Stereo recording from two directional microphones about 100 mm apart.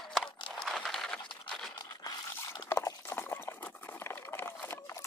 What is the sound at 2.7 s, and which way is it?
Clip-clop, 30° left (ahead or behind).